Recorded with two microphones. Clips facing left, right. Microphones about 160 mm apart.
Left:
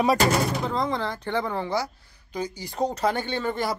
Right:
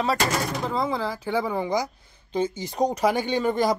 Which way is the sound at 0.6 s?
5° right (ahead or behind).